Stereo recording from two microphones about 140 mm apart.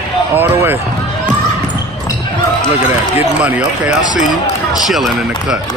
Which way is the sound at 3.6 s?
65° left (ahead or behind).